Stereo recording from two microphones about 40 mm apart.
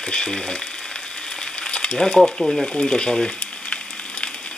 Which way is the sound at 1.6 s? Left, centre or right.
Left.